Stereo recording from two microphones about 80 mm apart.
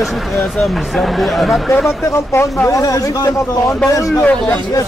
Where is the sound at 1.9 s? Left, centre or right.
Left.